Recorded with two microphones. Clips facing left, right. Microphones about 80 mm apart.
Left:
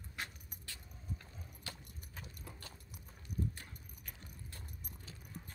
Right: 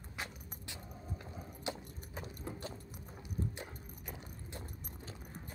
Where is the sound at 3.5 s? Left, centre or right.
Right.